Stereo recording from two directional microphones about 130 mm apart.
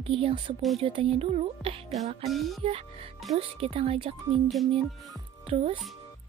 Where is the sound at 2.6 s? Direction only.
45° right (ahead or behind).